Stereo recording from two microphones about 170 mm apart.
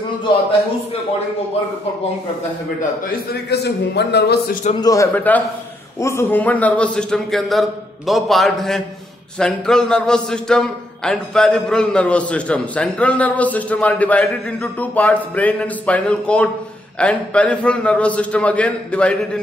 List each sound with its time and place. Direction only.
3.1 s a man's voice: 75° left (ahead or behind)
4.7 s a man's voice: 20° left (ahead or behind)